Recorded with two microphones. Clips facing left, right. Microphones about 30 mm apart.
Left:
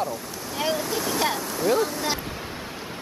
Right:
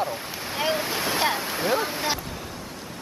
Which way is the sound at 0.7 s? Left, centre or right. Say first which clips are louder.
Even; right.